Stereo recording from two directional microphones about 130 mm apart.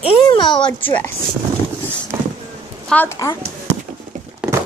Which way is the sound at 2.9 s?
10° left (ahead or behind).